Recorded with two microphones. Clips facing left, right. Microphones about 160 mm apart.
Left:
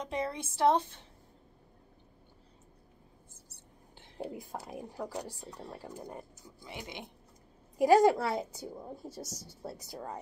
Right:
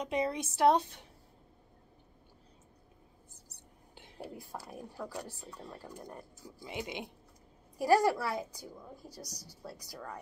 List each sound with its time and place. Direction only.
0.0 s a woman's voice: 20° right (ahead or behind)
3.5 s whispering: 15° right (ahead or behind)
4.2 s a woman's voice: 20° left (ahead or behind)
6.6 s a woman's voice: 20° right (ahead or behind)
7.7 s a woman's voice: 20° left (ahead or behind)